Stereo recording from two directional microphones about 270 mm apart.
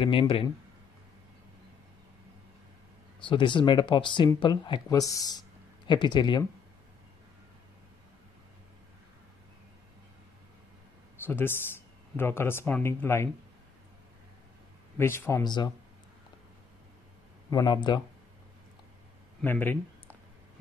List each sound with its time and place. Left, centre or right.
0.0 s speech: centre
3.3 s speech: centre
11.2 s speech: centre
15.0 s speech: centre
17.5 s speech: centre
19.4 s speech: centre